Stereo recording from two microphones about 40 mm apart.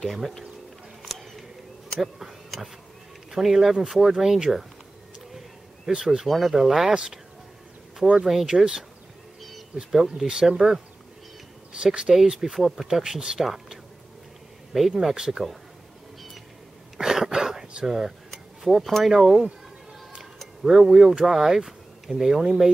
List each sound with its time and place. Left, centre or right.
2.0 s speech: centre
5.9 s speech: centre
8.3 s speech: centre
9.8 s speech: centre
12.1 s speech: centre
14.9 s speech: centre
17.0 s a sound: centre
18.6 s speech: centre
20.6 s speech: centre